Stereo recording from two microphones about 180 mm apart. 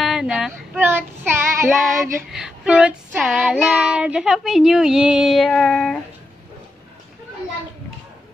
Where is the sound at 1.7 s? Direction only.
Centre (ahead or behind).